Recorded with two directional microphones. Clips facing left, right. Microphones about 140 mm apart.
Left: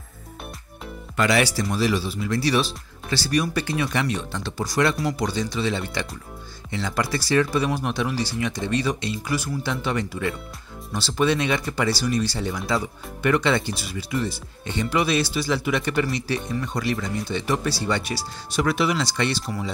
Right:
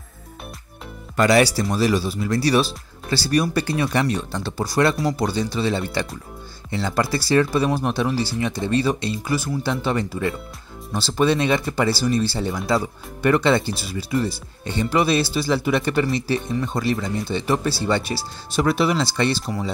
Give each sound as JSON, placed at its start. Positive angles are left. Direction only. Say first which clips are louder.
{"t": 1.1, "sound": "speech", "louder": "right 5 dB", "side_deg": -40}